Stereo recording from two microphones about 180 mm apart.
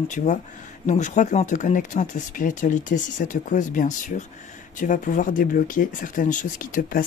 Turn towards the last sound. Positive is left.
turn(degrees=50)  # may be behind; listen again after turning